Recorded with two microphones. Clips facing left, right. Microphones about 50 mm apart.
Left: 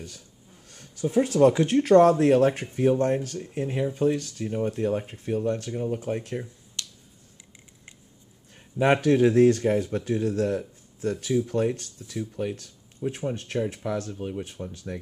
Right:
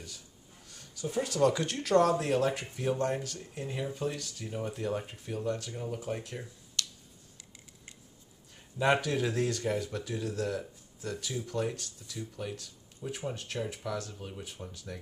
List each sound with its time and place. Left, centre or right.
0.7 s a sound: left
1.1 s speech: left
1.5 s speech: left
1.8 s speech: left
6.8 s finger snapping: left
8.5 s speech: left
14.1 s speech: left
14.7 s speech: left